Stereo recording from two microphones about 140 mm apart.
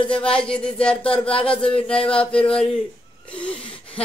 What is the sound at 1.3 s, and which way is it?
Speech, 40° left (ahead or behind).